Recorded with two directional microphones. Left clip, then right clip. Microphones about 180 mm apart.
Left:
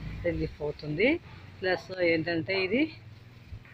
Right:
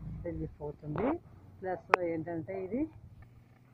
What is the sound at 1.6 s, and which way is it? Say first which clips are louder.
Speech: left 3 dB; 20° left (ahead or behind).